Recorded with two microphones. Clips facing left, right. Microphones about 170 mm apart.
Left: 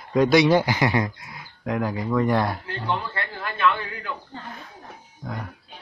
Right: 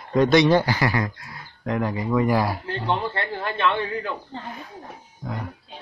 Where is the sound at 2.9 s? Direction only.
30° right (ahead or behind).